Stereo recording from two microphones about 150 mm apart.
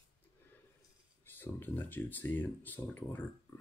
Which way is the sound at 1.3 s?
15° left (ahead or behind).